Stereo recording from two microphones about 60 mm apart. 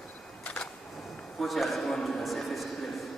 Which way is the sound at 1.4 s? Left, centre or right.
Centre.